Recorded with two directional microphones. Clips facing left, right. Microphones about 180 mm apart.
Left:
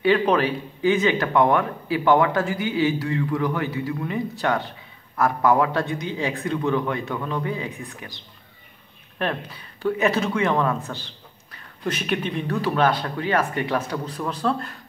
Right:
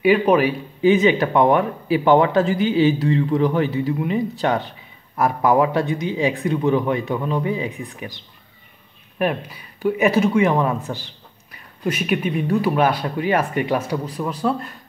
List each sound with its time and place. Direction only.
0.0 s a man's voice: 10° right (ahead or behind)
9.2 s a man's voice: 10° right (ahead or behind)